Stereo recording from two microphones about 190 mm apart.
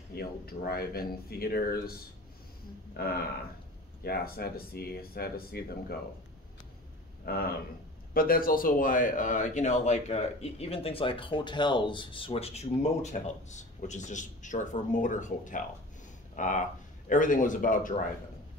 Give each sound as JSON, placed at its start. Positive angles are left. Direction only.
{"t": 0.1, "sound": "speech", "side_deg": 55}
{"t": 4.0, "sound": "speech", "side_deg": 55}
{"t": 7.2, "sound": "speech", "side_deg": 55}